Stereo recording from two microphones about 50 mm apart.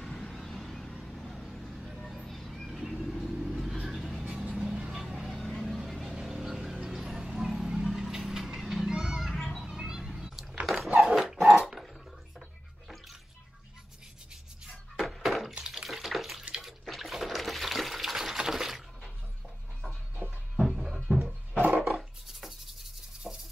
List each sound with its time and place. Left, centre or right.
0.0 s vehicle: centre
0.3 s vehicle: centre
7.0 s music: centre
7.3 s vehicle: centre
8.5 s music: centre
9.3 s children playing: centre
9.7 s a sound: centre
11.0 s dog: centre
15.0 s a sound: centre
15.7 s bathtub: centre
16.8 s water: centre
20.2 s music: right
20.5 s music: centre
21.7 s a sound: centre